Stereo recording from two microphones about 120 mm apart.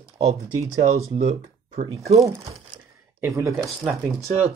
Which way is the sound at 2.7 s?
40° right (ahead or behind).